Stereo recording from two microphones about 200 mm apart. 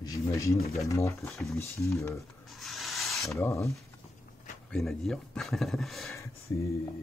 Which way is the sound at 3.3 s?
15° left (ahead or behind).